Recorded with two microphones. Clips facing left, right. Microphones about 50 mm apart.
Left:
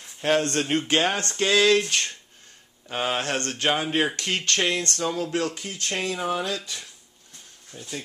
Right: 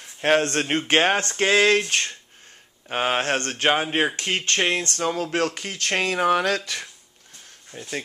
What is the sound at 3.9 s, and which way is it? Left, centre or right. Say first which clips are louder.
Speech: right 1 dB; right.